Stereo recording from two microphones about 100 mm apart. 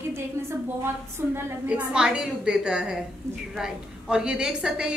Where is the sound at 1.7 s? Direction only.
10° right (ahead or behind).